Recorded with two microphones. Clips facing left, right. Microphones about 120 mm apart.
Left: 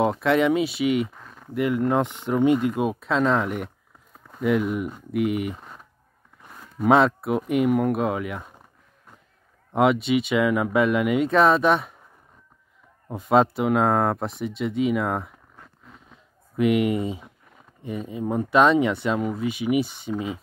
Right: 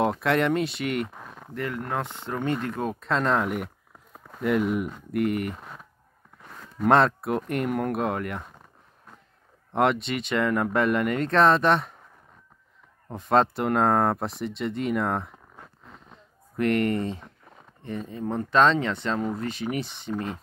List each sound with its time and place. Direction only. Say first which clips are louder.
0.0 s speech: left 3 dB; centre (ahead or behind)
1.1 s a sound: right 3 dB; 15° right (ahead or behind)
1.5 s speech: left 8 dB; 15° left (ahead or behind)
6.8 s speech: left 2 dB; 5° left (ahead or behind)
9.7 s speech: left 4 dB; centre (ahead or behind)
13.1 s speech: left 3 dB; 5° left (ahead or behind)
16.5 s speech: left 3 dB; 5° left (ahead or behind)